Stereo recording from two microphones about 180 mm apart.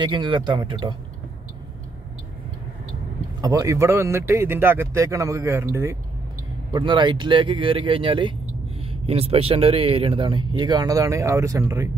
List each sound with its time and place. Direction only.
0.0 s speech: 25° right (ahead or behind)
3.3 s speech: 20° right (ahead or behind)
6.7 s speech: 25° right (ahead or behind)